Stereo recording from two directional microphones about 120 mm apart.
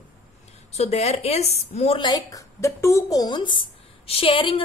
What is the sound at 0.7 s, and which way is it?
A woman's voice, 60° left (ahead or behind).